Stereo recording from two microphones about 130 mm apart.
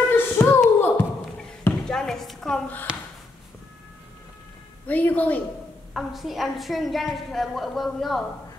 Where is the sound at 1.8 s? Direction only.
5° left (ahead or behind).